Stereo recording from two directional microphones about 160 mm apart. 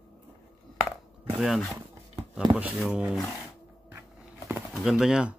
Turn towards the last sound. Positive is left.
turn(degrees=-5)  # may be behind; listen again after turning